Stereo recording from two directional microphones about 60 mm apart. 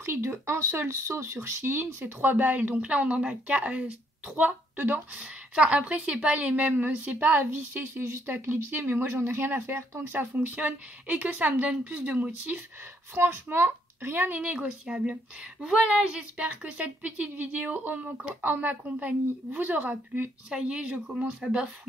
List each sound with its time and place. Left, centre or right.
0.0 s speech: right
2.1 s speech: right
5.2 s speech: centre
13.1 s speech: right
14.4 s a woman's voice: right
20.4 s a woman's voice: centre